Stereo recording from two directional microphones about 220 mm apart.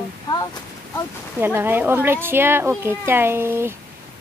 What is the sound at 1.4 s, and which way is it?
A woman's voice, 10° right (ahead or behind).